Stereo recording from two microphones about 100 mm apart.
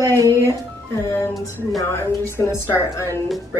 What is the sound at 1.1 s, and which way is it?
Speech, 30° left (ahead or behind).